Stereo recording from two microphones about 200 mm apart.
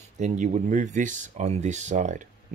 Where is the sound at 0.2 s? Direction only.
35° right (ahead or behind).